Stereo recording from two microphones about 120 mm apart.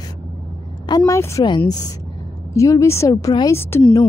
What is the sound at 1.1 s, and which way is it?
A woman's voice, 25° left (ahead or behind).